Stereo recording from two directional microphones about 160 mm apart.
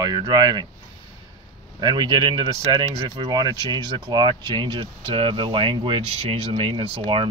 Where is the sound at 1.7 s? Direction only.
25° right (ahead or behind).